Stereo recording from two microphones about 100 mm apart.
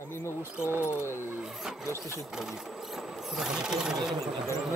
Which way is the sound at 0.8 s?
25° left (ahead or behind).